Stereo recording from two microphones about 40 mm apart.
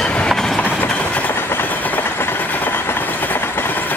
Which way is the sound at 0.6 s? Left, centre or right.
Left.